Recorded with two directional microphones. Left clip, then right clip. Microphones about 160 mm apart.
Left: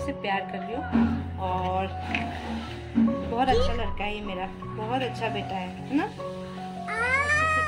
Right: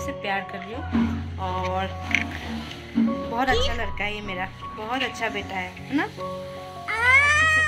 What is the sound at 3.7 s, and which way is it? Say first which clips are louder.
Speech: right 3 dB; centre (ahead or behind).